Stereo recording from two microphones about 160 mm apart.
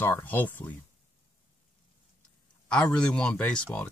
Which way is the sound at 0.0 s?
10° left (ahead or behind).